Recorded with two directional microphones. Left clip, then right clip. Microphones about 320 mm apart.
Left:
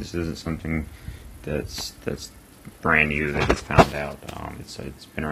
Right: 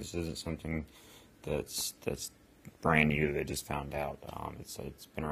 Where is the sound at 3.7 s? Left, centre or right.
Right.